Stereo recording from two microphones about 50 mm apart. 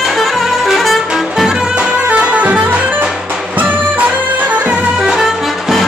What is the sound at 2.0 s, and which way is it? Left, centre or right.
Music, right.